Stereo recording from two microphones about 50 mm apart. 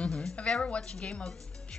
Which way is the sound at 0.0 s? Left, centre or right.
Centre.